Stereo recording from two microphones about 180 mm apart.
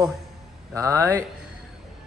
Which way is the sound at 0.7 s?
15° right (ahead or behind).